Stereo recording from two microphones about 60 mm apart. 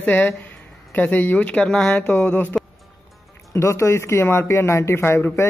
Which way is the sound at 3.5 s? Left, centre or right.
Left.